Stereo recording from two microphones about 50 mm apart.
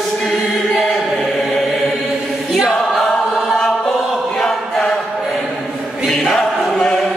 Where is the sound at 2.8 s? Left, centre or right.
Centre.